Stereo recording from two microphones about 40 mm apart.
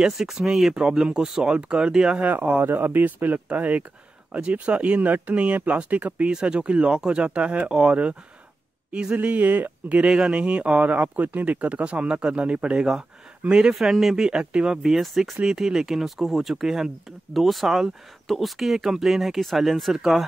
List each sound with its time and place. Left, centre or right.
0.0 s speech: centre
2.6 s speech: right
3.5 s speech: right
4.4 s speech: right
6.4 s speech: right
9.9 s speech: right
13.5 s speech: centre
13.7 s speech: centre
14.4 s speech: right
14.8 s speech: centre
17.3 s speech: centre